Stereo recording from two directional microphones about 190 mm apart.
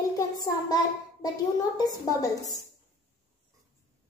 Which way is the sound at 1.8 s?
20° left (ahead or behind).